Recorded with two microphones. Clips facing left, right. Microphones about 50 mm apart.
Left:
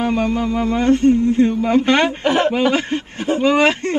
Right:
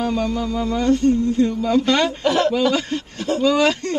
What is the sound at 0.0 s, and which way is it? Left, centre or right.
Speech, left.